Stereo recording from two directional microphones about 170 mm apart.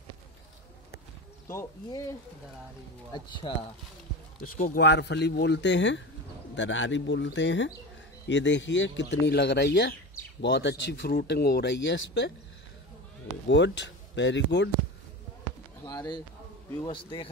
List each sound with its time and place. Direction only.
1.5 s speech: 20° left (ahead or behind)
4.6 s speech: 50° left (ahead or behind)
4.8 s speech: 85° left
13.5 s speech: 90° left
15.8 s bird: 25° left (ahead or behind)
16.8 s a man's voice: 30° left (ahead or behind)